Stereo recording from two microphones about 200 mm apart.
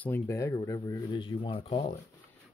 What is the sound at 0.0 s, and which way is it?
Speech, 15° left (ahead or behind).